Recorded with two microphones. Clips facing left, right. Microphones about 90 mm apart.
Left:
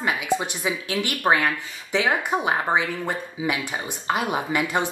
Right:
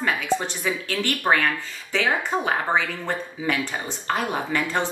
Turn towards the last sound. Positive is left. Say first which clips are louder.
# left 1 dB
turn(degrees=15)  # may be behind; listen again after turning